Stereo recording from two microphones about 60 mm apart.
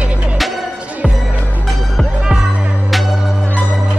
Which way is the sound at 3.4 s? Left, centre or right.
Left.